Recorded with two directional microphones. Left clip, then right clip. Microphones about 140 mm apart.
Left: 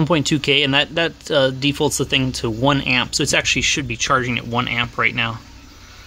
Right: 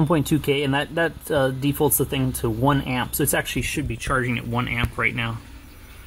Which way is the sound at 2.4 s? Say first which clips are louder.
Left 3 dB; 35° left (ahead or behind).